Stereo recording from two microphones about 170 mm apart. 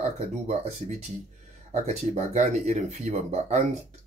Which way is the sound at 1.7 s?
40° right (ahead or behind).